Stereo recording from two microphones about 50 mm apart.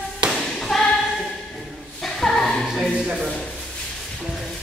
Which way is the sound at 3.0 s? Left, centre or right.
Centre.